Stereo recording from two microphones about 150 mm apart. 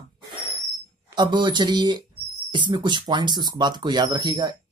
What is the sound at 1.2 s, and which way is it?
Speech, 30° right (ahead or behind).